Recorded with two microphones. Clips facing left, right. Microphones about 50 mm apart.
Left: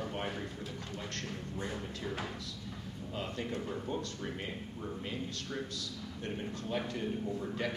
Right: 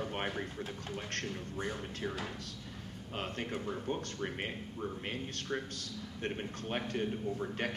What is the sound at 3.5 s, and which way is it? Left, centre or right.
Speech, right.